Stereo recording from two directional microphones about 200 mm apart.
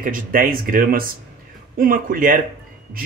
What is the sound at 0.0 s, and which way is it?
Speech, 45° right (ahead or behind).